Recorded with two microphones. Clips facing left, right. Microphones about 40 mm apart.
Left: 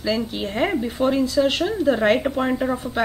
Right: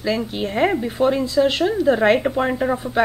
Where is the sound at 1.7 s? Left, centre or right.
Centre.